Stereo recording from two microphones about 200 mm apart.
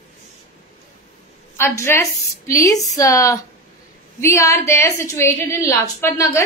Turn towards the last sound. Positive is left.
turn(degrees=15)  # may be behind; listen again after turning